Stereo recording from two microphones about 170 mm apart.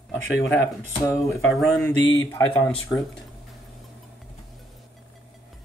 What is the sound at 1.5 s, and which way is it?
Speech, centre (ahead or behind).